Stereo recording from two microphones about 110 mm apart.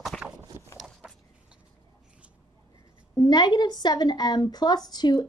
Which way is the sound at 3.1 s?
40° left (ahead or behind).